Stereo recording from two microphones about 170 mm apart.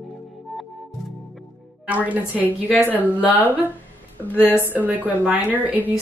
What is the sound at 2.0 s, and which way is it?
Speech, 10° right (ahead or behind).